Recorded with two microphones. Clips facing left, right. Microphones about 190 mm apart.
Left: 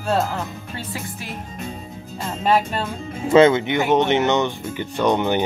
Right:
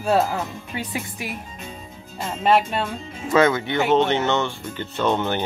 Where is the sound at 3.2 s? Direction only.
25° left (ahead or behind).